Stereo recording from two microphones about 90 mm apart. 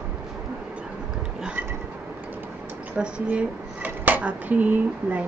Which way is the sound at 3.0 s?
15° right (ahead or behind).